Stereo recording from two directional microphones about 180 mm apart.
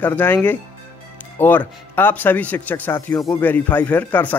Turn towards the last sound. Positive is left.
turn(degrees=10)  # may be behind; listen again after turning